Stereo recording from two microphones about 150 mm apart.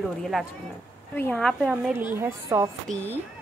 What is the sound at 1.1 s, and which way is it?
Speech, 10° left (ahead or behind).